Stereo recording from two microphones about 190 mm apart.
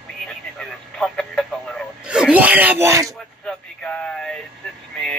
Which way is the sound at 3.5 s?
5° left (ahead or behind).